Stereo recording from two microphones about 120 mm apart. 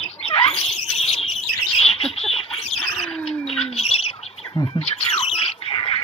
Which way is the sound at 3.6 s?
60° left (ahead or behind).